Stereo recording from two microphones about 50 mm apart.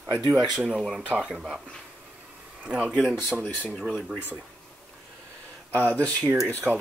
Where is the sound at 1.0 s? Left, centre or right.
Right.